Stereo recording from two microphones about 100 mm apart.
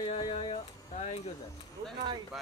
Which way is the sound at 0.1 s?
65° left (ahead or behind).